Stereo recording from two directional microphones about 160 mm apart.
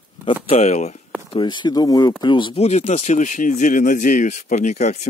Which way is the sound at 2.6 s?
45° left (ahead or behind).